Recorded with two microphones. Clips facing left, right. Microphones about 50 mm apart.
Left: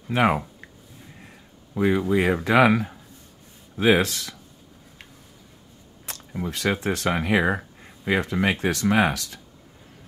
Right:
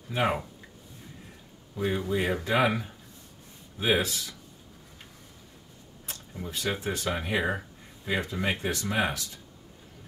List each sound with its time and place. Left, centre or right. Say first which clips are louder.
0.1 s speech: left 6 dB; left
1.8 s speech: left 7 dB; left
6.1 s camera: left 4 dB; left
6.4 s speech: left 6 dB; left